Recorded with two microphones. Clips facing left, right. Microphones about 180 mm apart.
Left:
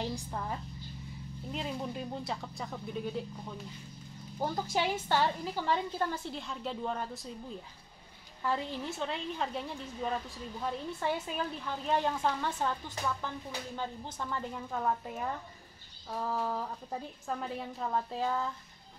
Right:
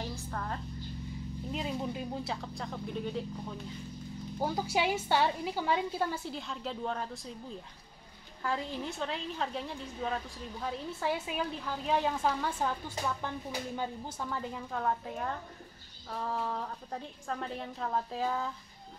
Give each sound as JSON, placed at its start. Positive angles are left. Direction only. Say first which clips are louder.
{"t": 0.0, "sound": "a woman's voice", "louder": "left 2 dB", "side_deg": 15}
{"t": 1.5, "sound": "a woman's voice", "louder": "right 1 dB", "side_deg": 0}
{"t": 4.4, "sound": "a woman's voice", "louder": "right 1 dB", "side_deg": -5}
{"t": 8.4, "sound": "a woman's voice", "louder": "left 1 dB", "side_deg": 0}